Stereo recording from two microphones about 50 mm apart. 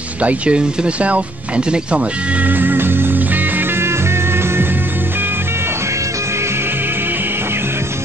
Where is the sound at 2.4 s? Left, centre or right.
Right.